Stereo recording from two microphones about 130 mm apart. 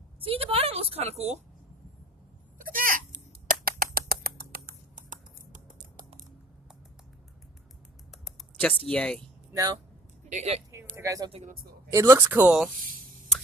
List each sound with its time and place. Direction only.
0.2 s a woman's voice: 45° right (ahead or behind)
2.6 s a sound: 90° right
4.6 s typing: 85° right
8.5 s speech: 5° left (ahead or behind)
10.3 s speech: 60° right (ahead or behind)
11.0 s speech: 25° right (ahead or behind)